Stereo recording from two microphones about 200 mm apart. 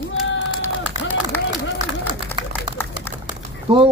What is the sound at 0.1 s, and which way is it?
Run, 70° left (ahead or behind).